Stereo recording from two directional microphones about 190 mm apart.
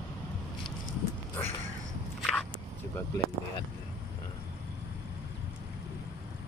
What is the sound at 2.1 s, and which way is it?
Walk, centre (ahead or behind).